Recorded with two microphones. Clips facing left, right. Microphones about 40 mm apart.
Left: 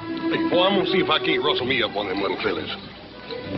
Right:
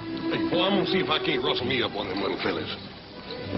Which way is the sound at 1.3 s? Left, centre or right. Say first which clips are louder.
Left 4 dB; left.